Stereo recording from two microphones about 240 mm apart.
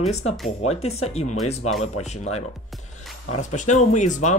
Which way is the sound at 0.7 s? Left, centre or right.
Left.